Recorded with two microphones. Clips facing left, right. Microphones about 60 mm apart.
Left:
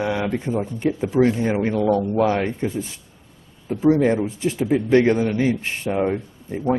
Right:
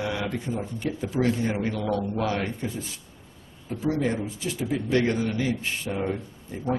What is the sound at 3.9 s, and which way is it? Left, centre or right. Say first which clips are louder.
Speech: left 8 dB; left.